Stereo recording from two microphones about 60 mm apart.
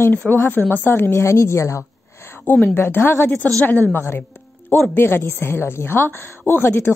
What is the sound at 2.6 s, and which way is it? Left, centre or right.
A woman's voice, left.